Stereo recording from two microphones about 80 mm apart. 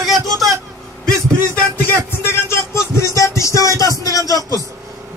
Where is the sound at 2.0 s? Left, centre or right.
Left.